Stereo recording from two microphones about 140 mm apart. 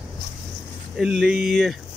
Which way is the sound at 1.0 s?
5° right (ahead or behind).